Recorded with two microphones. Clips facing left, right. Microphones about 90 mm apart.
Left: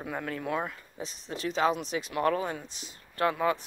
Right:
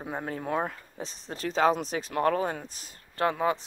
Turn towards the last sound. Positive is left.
turn(degrees=-25)  # may be behind; listen again after turning